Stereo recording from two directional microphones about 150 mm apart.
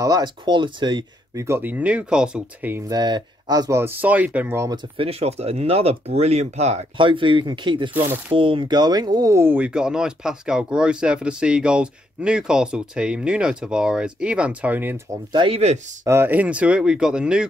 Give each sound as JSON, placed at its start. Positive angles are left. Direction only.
{"t": 0.0, "sound": "speech", "side_deg": -25}
{"t": 2.9, "sound": "speech", "side_deg": -30}
{"t": 4.9, "sound": "speech", "side_deg": -40}
{"t": 7.1, "sound": "speech", "side_deg": -35}
{"t": 15.3, "sound": "speech", "side_deg": -40}
{"t": 16.0, "sound": "speech", "side_deg": -15}